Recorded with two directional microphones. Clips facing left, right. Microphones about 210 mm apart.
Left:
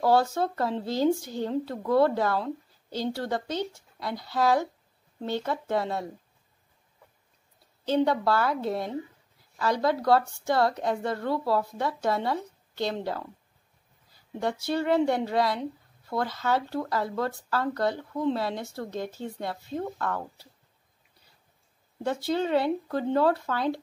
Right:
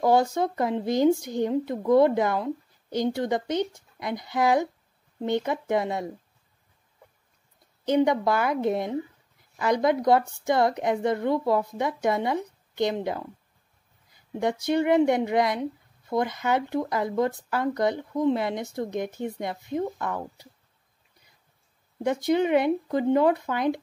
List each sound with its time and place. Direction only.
0.0 s a woman's voice: 15° right (ahead or behind)
7.8 s a woman's voice: 15° right (ahead or behind)
14.4 s a woman's voice: 15° right (ahead or behind)
22.0 s a woman's voice: 15° right (ahead or behind)